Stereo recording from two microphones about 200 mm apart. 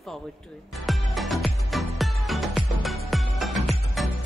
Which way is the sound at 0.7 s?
Centre (ahead or behind).